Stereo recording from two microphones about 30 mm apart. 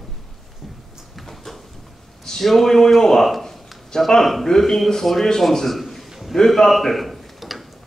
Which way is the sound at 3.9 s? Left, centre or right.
Left.